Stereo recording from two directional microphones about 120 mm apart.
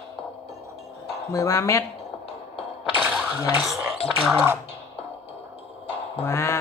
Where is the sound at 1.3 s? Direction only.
25° left (ahead or behind).